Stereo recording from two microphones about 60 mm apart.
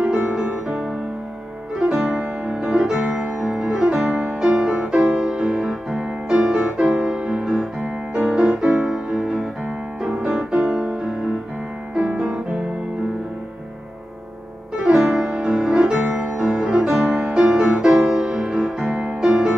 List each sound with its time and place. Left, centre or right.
0.0 s music: centre
7.2 s music: centre
14.8 s music: centre
15.3 s music: centre
18.8 s music: centre
19.0 s music: centre